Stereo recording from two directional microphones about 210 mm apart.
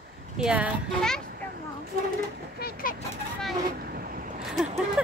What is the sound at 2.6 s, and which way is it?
Speech, 40° left (ahead or behind).